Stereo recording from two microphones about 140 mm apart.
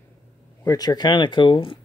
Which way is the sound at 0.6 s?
30° left (ahead or behind).